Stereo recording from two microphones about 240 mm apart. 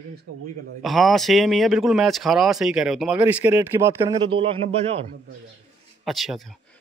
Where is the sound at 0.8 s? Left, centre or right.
Centre; by 5.0 s right.